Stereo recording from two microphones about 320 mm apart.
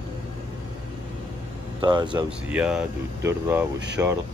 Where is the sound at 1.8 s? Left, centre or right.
Centre.